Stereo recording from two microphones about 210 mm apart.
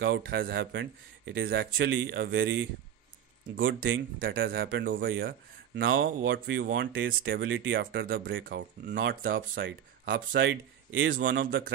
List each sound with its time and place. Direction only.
0.0 s speech: 50° right (ahead or behind)
6.2 s speech: 60° right (ahead or behind)